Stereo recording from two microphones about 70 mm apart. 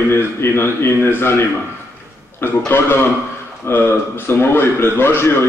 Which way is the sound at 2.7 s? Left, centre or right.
Left.